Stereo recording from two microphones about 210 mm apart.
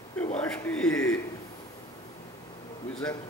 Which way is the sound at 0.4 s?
5° left (ahead or behind).